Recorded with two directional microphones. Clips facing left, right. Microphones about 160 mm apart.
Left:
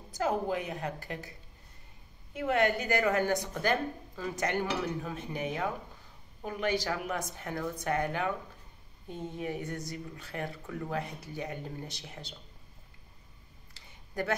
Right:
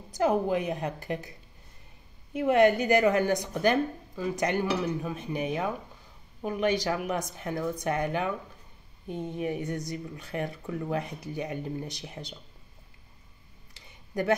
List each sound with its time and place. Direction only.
0.1 s speech: 15° right (ahead or behind)
2.3 s speech: 20° right (ahead or behind)
13.7 s a sound: 15° right (ahead or behind)